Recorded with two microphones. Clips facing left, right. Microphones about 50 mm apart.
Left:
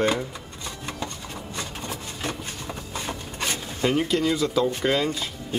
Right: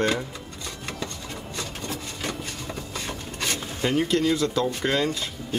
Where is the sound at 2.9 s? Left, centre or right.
Left.